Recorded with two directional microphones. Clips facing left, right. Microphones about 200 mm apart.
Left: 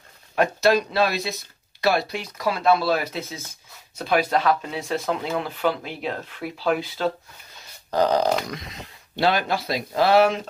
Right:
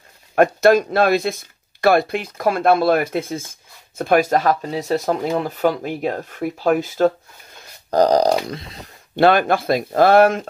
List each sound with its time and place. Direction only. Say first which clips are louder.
0.4 s speech: right 6 dB; 50° right (ahead or behind)
7.5 s a sound: right 6 dB; 40° right (ahead or behind)
9.1 s speech: right 7 dB; 55° right (ahead or behind)